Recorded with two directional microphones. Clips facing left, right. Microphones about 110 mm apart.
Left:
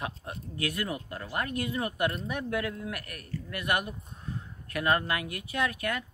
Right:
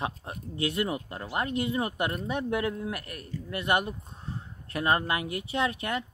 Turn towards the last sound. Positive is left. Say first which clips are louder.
# right 2 dB
turn(degrees=-25)  # may be behind; listen again after turning